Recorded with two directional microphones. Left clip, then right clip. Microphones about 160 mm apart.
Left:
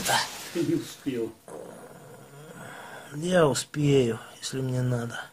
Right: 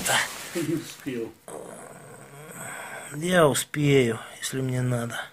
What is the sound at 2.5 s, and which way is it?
Speech, 5° right (ahead or behind).